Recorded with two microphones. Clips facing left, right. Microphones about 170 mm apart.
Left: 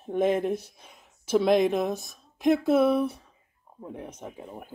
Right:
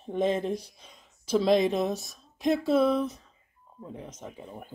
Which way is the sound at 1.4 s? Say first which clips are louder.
Left 1 dB; 55° left (ahead or behind).